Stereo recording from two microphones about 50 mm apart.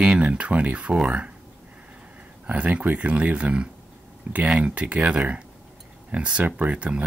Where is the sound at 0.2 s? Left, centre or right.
Right.